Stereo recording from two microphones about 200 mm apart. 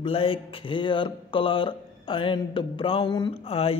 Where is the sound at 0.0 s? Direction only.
25° left (ahead or behind).